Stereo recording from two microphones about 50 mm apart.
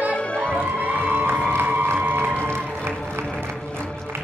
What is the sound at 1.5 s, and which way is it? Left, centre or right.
Music, right.